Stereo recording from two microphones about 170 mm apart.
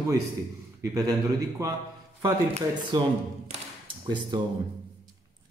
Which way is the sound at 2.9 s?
25° right (ahead or behind).